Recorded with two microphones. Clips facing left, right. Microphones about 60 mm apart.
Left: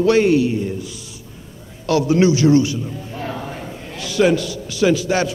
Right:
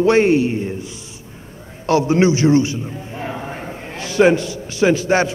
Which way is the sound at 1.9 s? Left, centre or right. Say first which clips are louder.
Right 1 dB; right.